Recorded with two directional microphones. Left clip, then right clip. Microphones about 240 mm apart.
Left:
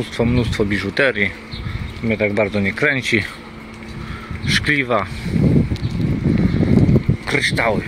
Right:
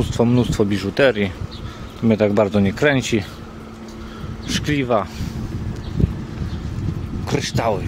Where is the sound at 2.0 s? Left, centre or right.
Right.